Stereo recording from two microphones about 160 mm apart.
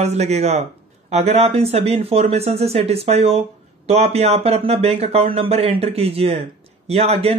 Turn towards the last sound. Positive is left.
turn(degrees=-40)  # may be behind; listen again after turning